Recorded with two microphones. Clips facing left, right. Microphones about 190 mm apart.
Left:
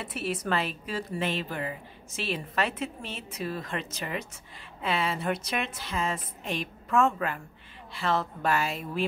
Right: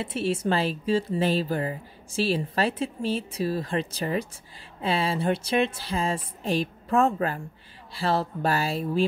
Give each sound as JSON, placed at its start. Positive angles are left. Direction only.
{"t": 0.0, "sound": "speech", "side_deg": -30}